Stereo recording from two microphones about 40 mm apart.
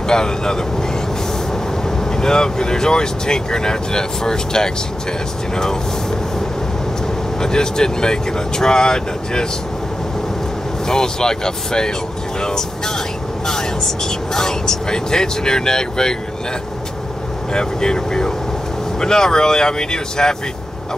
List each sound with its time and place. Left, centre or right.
0.1 s speech: centre
2.1 s speech: centre
7.3 s speech: centre
10.9 s speech: centre
17.5 s speech: centre